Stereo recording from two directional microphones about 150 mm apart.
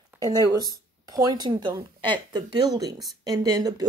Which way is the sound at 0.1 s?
10° right (ahead or behind).